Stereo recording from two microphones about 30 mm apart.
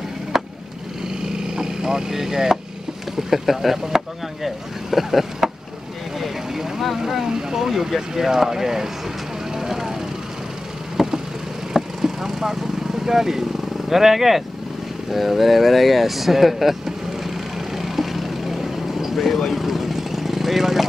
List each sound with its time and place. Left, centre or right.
0.3 s vehicle: centre
3.2 s speech: centre
6.1 s vehicle: centre
7.2 s speech: centre
9.6 s vehicle: centre
15.0 s speech: centre
16.8 s vehicle: centre